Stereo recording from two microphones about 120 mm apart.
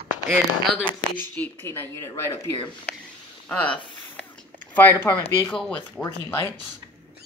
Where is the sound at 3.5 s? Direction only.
10° left (ahead or behind).